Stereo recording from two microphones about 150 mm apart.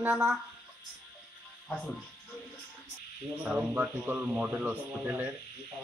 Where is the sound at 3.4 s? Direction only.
10° right (ahead or behind).